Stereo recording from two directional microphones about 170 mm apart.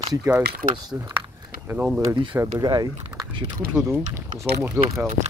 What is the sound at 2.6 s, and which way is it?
Speech, 20° right (ahead or behind).